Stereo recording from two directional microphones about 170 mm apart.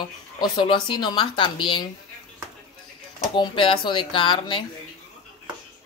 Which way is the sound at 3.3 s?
30° left (ahead or behind).